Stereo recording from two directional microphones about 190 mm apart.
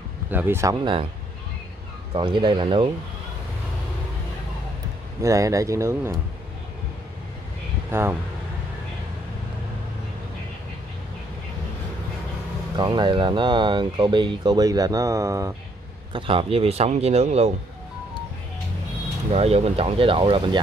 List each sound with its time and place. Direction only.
0.3 s speech: 10° right (ahead or behind)
2.1 s speech: 25° right (ahead or behind)
5.2 s speech: 15° right (ahead or behind)
7.9 s speech: 15° right (ahead or behind)
12.7 s speech: 25° right (ahead or behind)
16.1 s speech: 25° right (ahead or behind)
19.3 s speech: 30° right (ahead or behind)